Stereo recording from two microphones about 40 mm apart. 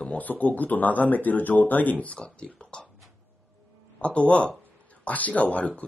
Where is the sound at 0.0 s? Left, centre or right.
Left.